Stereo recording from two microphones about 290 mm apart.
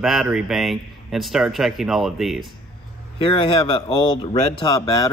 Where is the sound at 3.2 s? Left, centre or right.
Centre.